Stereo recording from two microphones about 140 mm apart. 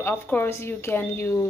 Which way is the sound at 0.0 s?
15° left (ahead or behind).